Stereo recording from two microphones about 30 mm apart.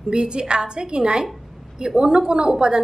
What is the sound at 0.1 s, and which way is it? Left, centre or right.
A woman's voice, right.